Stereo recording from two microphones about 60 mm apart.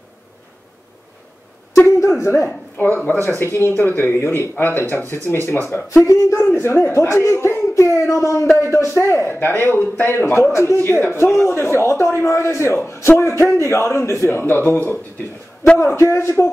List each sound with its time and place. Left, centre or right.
1.9 s a man's voice: left
2.8 s speech: left
3.3 s a man's voice: left
3.7 s speech: left
5.9 s speech: left
6.5 s a man's voice: left
9.6 s speech: left
10.3 s a man's voice: left
14.3 s speech: left
15.8 s a man's voice: left